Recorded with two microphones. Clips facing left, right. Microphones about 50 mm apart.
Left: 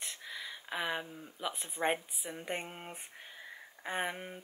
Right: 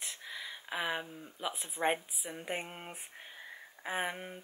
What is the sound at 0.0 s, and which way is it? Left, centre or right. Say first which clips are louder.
Speech: even; centre.